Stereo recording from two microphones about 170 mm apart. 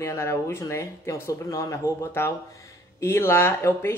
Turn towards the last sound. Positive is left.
turn(degrees=15)  # may be behind; listen again after turning